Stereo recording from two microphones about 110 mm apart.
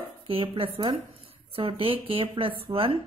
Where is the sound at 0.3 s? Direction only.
60° right (ahead or behind).